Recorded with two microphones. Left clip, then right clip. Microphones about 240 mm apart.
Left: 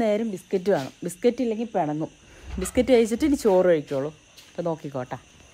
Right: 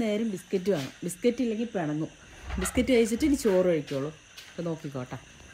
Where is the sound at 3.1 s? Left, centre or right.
Centre.